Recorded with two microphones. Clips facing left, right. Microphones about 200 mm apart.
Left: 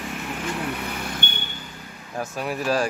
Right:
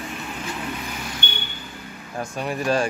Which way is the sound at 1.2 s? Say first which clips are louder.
Right 1 dB; 50° left (ahead or behind).